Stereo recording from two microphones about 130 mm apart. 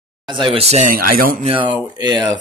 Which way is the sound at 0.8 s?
90° right.